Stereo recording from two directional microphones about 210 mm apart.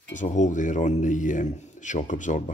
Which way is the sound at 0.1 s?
35° left (ahead or behind).